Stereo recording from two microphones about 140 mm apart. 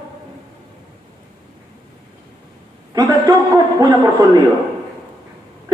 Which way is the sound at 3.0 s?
20° right (ahead or behind).